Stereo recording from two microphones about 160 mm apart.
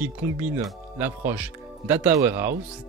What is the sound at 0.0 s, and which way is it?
Speech, 10° right (ahead or behind).